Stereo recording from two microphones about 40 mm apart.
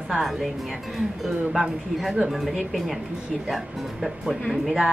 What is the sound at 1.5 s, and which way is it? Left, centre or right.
Speech, centre.